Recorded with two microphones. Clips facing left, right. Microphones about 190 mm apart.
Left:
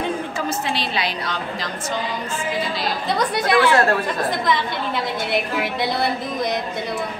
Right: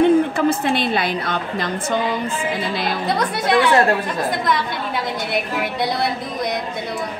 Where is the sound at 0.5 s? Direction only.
55° right (ahead or behind).